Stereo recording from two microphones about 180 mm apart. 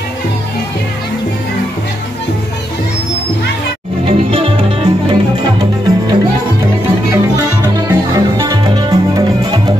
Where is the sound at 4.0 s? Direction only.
30° right (ahead or behind).